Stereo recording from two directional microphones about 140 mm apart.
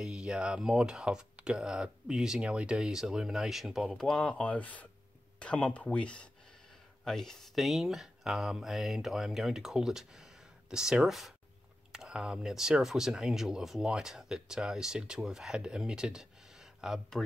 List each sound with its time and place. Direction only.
0.0 s speech: 5° right (ahead or behind)